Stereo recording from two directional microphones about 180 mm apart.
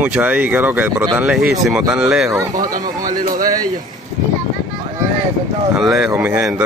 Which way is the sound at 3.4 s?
20° right (ahead or behind).